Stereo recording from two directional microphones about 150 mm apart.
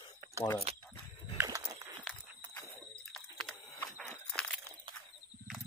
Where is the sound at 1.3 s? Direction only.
20° right (ahead or behind).